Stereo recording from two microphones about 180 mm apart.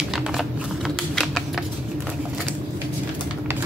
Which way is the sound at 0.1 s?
Centre (ahead or behind).